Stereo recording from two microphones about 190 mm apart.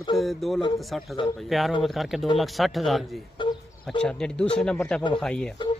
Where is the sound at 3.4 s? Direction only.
25° left (ahead or behind).